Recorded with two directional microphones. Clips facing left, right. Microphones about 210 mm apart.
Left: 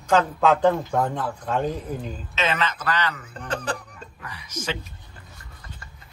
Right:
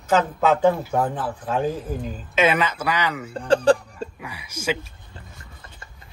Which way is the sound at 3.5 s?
30° right (ahead or behind).